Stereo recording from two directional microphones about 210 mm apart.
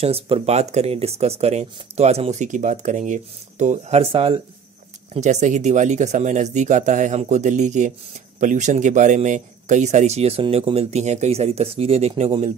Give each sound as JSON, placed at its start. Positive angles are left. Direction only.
{"t": 0.0, "sound": "speech", "side_deg": -30}